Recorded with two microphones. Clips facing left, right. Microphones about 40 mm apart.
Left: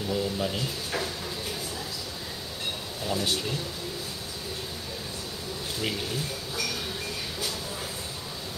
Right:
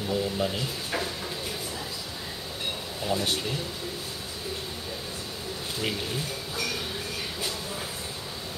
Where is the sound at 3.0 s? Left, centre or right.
Centre.